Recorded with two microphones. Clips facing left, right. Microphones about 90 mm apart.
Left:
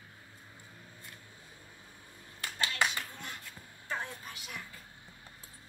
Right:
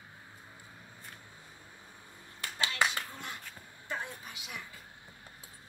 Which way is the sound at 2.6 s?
20° right (ahead or behind).